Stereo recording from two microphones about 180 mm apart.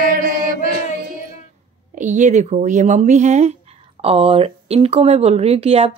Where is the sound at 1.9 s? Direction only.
40° right (ahead or behind).